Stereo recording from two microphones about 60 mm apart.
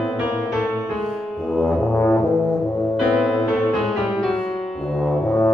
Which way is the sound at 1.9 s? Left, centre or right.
Centre.